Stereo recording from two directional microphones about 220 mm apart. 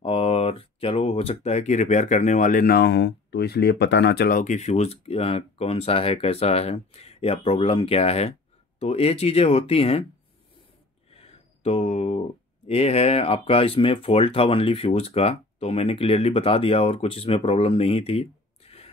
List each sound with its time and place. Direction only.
0.0 s speech: 25° left (ahead or behind)
11.1 s a sound: 25° left (ahead or behind)
12.6 s speech: 25° left (ahead or behind)